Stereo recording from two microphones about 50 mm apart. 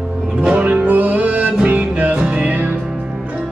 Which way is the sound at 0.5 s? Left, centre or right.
Right.